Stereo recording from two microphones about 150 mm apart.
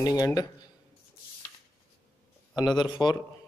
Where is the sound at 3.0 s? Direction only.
30° left (ahead or behind).